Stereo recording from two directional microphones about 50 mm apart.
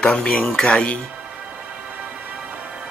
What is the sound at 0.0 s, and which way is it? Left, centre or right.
Speech, centre.